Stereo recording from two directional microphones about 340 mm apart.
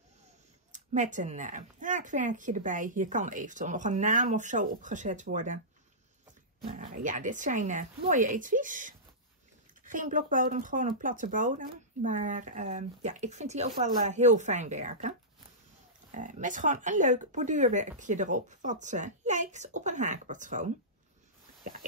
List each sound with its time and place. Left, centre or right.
0.7 s speech: right
6.6 s speech: centre